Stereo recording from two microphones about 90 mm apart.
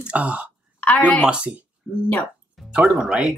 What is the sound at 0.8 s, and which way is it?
Speech, 15° left (ahead or behind).